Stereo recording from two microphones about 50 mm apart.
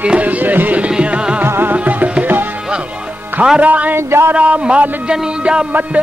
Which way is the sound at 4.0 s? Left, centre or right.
Right.